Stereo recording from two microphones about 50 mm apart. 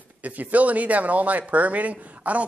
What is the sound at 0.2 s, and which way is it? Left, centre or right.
Speech, right.